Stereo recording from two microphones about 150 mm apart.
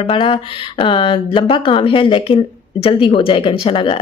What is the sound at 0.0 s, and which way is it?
Speech, 40° left (ahead or behind).